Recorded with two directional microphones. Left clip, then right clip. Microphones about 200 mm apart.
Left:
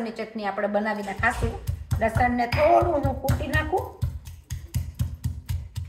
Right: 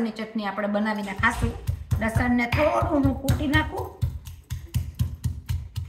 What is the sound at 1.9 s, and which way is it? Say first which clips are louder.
Music: left 3 dB; 15° left (ahead or behind).